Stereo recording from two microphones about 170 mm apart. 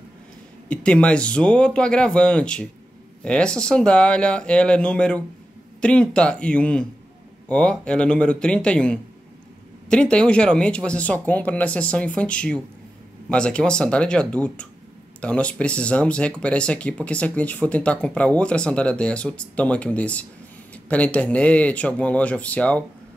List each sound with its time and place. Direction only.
0.7 s speech: 5° left (ahead or behind)